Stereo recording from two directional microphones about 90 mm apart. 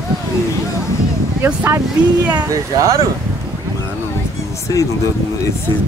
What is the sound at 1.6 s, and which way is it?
Speech, 25° right (ahead or behind).